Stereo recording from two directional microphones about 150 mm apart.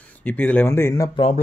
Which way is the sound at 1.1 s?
40° left (ahead or behind).